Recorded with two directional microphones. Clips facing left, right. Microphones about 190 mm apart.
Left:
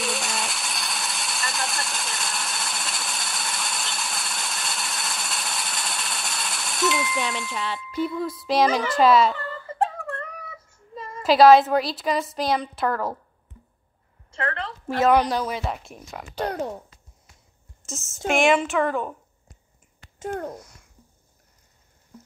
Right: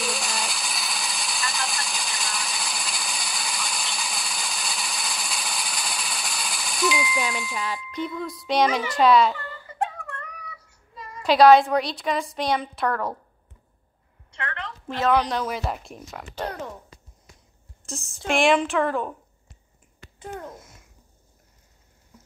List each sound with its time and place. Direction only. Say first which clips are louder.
0.0 s a sound: left 1 dB; centre (ahead or behind)
8.7 s a woman's voice: even; centre (ahead or behind)
9.7 s a sound: left 4 dB; 35° left (ahead or behind)
11.2 s a woman's voice: left 1 dB; centre (ahead or behind)
14.3 s a sound: left 5 dB; 35° left (ahead or behind)
15.2 s a woman's voice: left 1 dB; centre (ahead or behind)
16.4 s speech: left 5 dB; 40° left (ahead or behind)
17.8 s a woman's voice: left 2 dB; centre (ahead or behind)
20.2 s a child's voice: left 6 dB; 45° left (ahead or behind)